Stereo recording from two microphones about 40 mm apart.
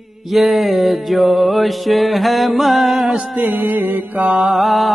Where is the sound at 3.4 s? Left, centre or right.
Right.